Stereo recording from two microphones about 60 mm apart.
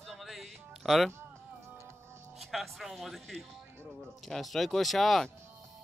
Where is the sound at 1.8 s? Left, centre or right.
Right.